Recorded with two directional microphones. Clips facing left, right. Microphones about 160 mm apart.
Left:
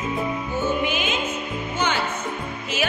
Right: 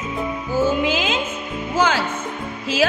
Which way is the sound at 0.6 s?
90° right.